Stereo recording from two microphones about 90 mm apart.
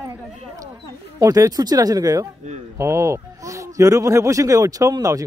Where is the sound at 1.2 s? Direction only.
40° right (ahead or behind).